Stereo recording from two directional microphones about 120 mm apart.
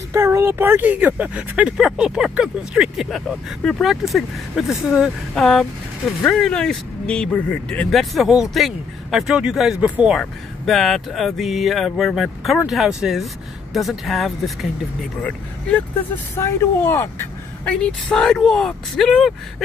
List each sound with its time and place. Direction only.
0.1 s speech: 20° right (ahead or behind)
10.1 s speech: centre (ahead or behind)
15.2 s speech: 10° left (ahead or behind)
16.3 s speech: 25° left (ahead or behind)
17.6 s speech: 5° left (ahead or behind)